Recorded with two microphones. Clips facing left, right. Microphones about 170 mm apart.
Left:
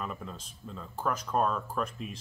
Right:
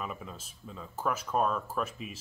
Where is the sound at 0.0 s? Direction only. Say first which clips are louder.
Left 1 dB; 5° right (ahead or behind).